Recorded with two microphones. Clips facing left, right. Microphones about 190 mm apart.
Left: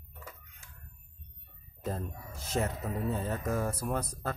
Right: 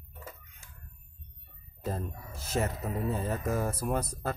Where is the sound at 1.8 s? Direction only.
5° right (ahead or behind).